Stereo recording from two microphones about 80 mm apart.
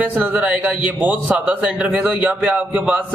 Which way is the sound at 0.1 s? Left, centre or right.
Right.